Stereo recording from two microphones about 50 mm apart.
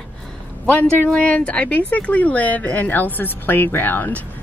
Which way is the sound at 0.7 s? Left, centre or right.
Left.